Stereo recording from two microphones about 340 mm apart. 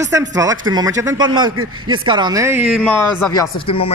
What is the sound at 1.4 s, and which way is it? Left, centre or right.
Speech, right.